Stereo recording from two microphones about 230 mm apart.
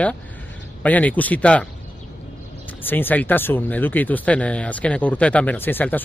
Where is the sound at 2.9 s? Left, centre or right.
Centre.